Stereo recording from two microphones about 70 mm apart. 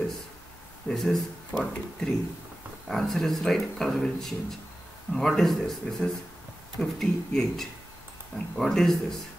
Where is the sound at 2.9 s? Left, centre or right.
Centre.